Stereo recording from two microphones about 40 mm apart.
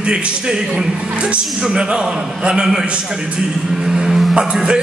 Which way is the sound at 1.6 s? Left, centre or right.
Right.